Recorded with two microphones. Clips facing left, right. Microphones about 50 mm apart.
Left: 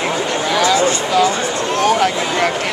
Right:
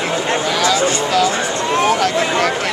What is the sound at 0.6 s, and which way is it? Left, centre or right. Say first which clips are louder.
Speech: left 3 dB; centre.